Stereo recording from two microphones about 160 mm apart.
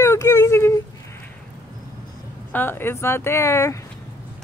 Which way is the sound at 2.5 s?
10° left (ahead or behind).